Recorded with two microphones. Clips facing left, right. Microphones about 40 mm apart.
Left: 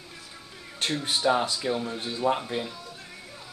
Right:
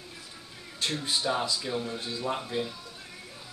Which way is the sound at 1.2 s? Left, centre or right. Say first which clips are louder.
Left 8 dB; left.